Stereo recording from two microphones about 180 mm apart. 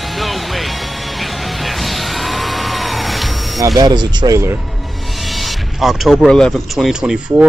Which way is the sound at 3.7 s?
25° right (ahead or behind).